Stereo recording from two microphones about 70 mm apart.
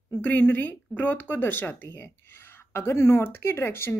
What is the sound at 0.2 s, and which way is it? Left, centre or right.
Speech, left.